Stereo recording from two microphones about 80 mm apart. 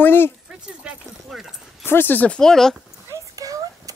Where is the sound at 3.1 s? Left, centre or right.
Right.